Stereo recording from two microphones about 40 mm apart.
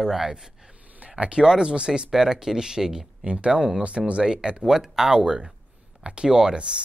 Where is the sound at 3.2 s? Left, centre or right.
Right.